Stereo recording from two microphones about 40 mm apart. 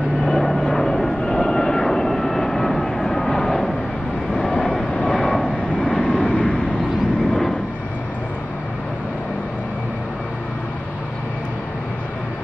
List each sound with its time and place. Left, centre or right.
0.2 s vehicle: centre
5.8 s vehicle: left